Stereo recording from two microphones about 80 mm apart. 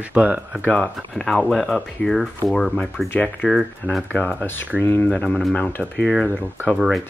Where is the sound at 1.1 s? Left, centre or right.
Centre.